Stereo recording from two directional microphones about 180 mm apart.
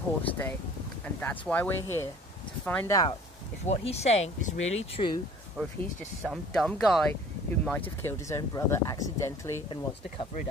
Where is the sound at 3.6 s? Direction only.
35° left (ahead or behind).